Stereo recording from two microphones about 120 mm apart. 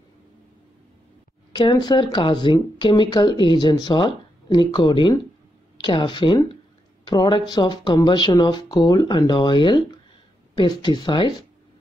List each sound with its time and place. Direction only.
1.5 s speech: 40° left (ahead or behind)